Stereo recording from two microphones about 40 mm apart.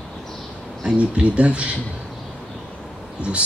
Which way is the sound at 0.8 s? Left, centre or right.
Right.